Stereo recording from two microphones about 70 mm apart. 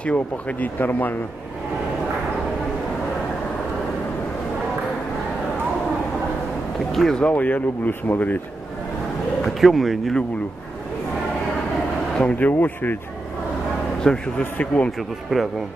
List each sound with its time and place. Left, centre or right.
0.0 s speech: left
6.9 s speech: centre
7.2 s speech: centre
9.4 s speech: centre
12.2 s speech: centre
14.0 s speech: centre
14.4 s speech: left
15.3 s speech: centre